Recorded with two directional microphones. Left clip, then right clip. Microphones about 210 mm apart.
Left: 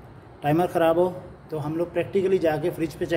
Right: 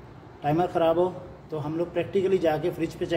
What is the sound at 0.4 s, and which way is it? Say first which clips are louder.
A man's voice: left 2 dB; 20° left (ahead or behind).